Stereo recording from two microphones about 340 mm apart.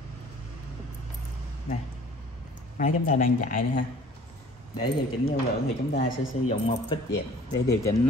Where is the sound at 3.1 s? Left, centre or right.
Left.